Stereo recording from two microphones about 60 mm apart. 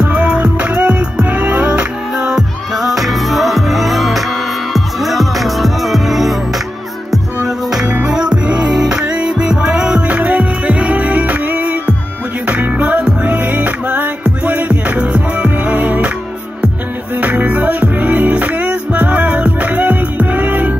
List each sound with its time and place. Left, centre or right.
0.0 s music: centre
7.4 s music: centre; by 16.1 s right
17.2 s music: right